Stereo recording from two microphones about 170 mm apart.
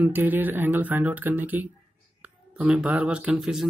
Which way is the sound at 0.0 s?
10° right (ahead or behind).